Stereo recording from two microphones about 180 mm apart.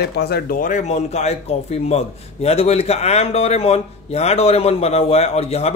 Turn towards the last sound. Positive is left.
turn(degrees=35)  # may be behind; listen again after turning